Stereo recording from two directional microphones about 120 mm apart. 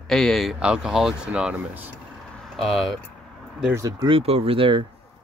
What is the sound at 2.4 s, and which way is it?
Speech, centre (ahead or behind).